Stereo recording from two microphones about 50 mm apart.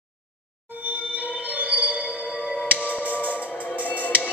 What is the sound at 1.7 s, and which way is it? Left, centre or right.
Train, right.